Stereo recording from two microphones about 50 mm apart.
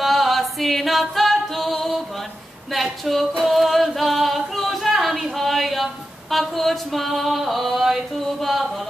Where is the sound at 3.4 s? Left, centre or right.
Centre.